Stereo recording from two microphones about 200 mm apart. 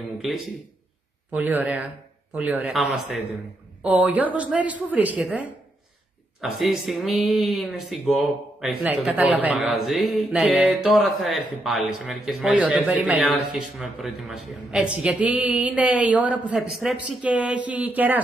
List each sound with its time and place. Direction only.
0.2 s a woman's voice: centre (ahead or behind)